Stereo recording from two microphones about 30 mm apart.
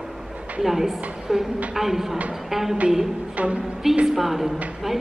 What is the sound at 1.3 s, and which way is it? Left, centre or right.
A woman's voice, centre.